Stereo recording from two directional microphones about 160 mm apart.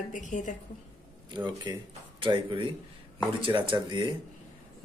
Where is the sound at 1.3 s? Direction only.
30° right (ahead or behind).